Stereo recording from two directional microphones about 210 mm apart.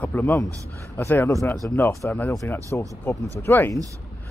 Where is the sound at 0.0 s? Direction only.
10° left (ahead or behind).